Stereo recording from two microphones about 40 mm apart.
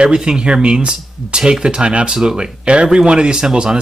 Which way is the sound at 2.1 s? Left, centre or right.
Centre.